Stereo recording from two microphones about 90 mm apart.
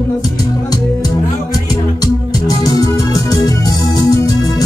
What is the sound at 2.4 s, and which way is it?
Music, 40° left (ahead or behind).